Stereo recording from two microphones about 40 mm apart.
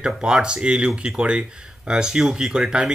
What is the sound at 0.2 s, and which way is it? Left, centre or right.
Speech, centre.